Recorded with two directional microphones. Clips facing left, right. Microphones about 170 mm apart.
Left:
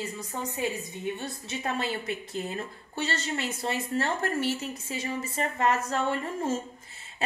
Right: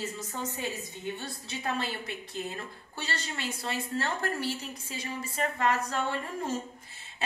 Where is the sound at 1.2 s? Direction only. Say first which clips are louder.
Left 2 dB; 25° left (ahead or behind).